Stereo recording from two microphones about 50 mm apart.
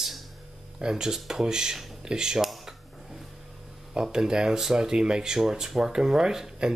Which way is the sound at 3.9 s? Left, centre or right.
Centre.